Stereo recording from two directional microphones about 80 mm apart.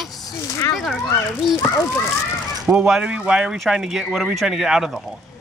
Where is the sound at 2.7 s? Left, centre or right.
Centre.